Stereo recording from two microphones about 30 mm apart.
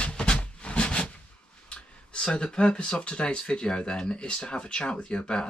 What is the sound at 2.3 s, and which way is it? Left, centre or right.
Speech, left.